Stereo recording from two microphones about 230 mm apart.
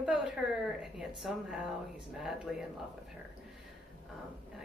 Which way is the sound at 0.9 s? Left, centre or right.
Centre.